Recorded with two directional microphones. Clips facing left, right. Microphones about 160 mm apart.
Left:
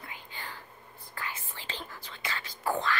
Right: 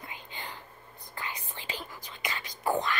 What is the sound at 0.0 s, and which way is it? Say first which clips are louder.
Whispering: right 1 dB; 20° right (ahead or behind).